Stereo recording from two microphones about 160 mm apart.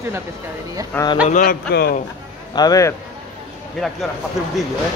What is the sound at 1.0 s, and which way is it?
Speech, 10° left (ahead or behind).